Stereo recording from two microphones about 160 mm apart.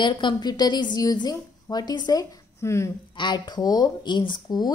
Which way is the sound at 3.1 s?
30° left (ahead or behind).